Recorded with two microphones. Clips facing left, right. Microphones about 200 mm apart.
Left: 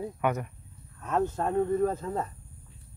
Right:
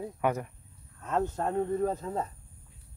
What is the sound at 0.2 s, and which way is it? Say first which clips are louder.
Speech: even; 30° right (ahead or behind).